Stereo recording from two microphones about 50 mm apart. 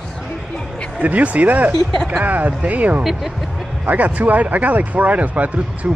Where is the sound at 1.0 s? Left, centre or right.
Right.